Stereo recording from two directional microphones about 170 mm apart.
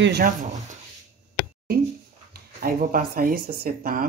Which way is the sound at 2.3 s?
60° right (ahead or behind).